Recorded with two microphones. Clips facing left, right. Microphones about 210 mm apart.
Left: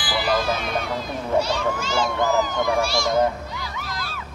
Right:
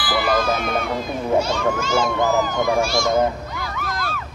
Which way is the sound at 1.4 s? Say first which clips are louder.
Right 3 dB; 45° right (ahead or behind).